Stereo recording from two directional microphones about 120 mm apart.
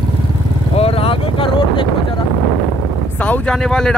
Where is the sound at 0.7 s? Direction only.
55° left (ahead or behind).